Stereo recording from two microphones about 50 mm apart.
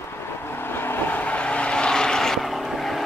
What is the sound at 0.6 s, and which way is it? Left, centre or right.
Vehicle, left.